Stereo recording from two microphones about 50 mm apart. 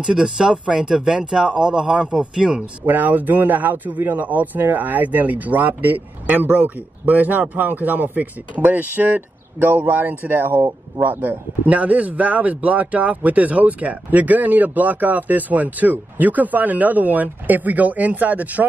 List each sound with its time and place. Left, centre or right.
0.0 s speech: centre
2.8 s speech: right